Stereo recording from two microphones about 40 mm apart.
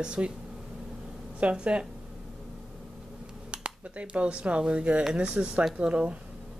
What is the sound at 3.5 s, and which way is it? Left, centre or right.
Speech, right.